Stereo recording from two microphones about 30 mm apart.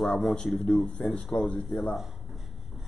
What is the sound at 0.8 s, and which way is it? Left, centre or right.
Speech, left.